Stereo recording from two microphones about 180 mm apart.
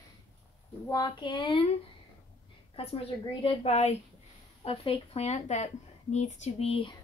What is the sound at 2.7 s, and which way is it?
A woman's voice, 30° left (ahead or behind).